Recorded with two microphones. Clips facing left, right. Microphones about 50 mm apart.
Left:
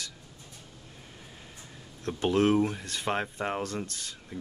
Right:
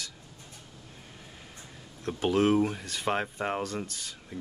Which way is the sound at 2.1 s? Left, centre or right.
Centre.